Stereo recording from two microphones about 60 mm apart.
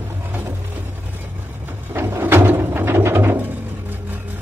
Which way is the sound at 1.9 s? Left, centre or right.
Right.